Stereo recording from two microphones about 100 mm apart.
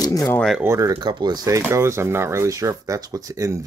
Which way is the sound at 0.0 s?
35° left (ahead or behind).